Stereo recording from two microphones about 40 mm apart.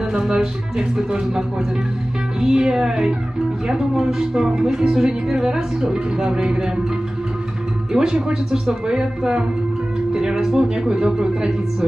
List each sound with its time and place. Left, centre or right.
0.2 s speech: centre
2.4 s speech: centre
7.9 s speech: centre